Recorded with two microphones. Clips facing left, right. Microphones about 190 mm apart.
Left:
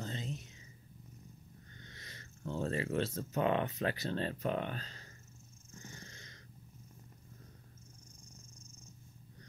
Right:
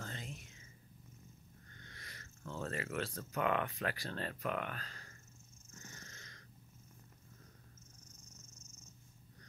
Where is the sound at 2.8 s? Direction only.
25° left (ahead or behind).